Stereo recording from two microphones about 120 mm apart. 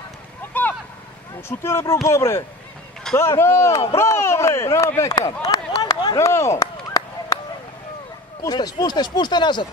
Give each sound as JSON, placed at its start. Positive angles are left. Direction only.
{"t": 0.5, "sound": "vehicle", "side_deg": 15}
{"t": 1.6, "sound": "speech", "side_deg": 20}
{"t": 5.8, "sound": "a sound", "side_deg": 30}
{"t": 8.5, "sound": "speech", "side_deg": 35}